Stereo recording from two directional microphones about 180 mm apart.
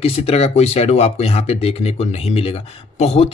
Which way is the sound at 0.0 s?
35° left (ahead or behind).